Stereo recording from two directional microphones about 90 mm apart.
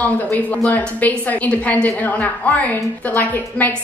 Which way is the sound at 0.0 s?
15° left (ahead or behind).